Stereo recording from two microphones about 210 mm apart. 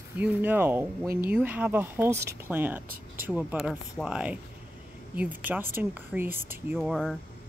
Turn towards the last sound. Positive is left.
turn(degrees=0)  # may be behind; listen again after turning